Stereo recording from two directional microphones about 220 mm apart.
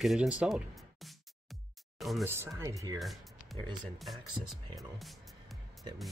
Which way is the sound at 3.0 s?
Centre (ahead or behind).